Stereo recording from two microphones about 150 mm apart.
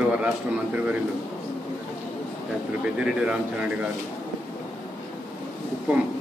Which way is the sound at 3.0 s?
5° right (ahead or behind).